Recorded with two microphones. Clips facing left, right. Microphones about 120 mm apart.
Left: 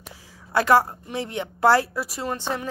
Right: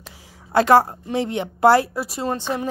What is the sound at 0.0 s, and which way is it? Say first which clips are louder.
A woman's voice: even; 25° right (ahead or behind).